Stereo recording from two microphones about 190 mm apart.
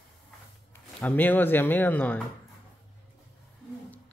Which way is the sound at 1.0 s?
10° left (ahead or behind).